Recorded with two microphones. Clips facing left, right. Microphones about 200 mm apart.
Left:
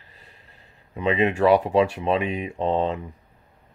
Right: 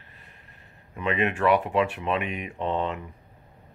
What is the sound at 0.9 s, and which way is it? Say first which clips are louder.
Speech: left 5 dB; 30° left (ahead or behind).